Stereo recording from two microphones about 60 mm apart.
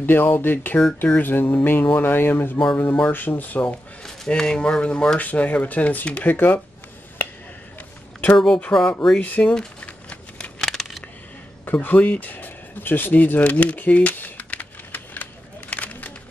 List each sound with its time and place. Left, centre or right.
0.0 s speech: left
0.7 s speech: centre
1.1 s speech: left
4.3 s speech: centre; by 6.6 s left
8.7 s speech: centre
9.2 s speech: left
9.6 s a sound: left
10.6 s a sound: centre
11.6 s a sound: left